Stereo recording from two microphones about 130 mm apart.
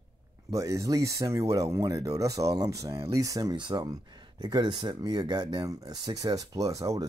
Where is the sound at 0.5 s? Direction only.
25° right (ahead or behind).